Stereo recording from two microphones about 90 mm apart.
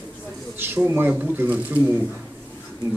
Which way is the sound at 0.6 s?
25° right (ahead or behind).